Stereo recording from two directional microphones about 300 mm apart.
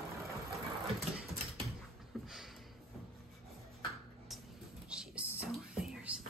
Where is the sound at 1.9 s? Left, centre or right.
Centre.